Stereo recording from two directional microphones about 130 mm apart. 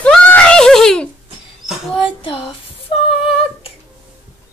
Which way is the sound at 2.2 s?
40° left (ahead or behind).